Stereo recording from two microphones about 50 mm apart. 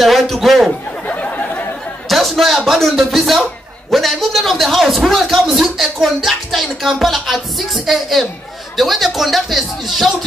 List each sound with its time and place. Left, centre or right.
0.0 s a man's voice: centre
1.3 s chatter: left
2.0 s a man's voice: centre